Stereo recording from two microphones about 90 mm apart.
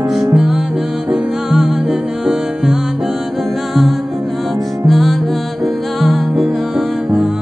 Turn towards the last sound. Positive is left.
turn(degrees=0)  # may be behind; listen again after turning